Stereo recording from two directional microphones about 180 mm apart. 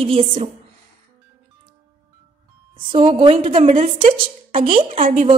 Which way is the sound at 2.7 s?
30° right (ahead or behind).